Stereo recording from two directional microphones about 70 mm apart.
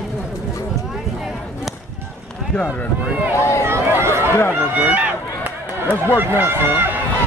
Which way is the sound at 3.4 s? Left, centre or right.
Left.